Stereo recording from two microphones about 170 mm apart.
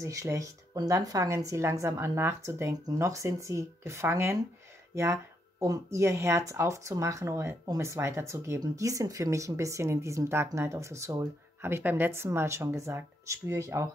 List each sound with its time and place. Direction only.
0.0 s speech: 20° right (ahead or behind)